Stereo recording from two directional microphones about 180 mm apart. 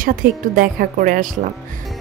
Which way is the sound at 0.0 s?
50° right (ahead or behind).